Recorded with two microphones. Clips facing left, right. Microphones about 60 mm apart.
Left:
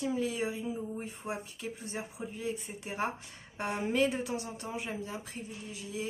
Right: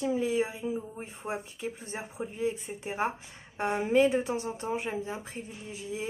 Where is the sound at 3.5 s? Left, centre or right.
Right.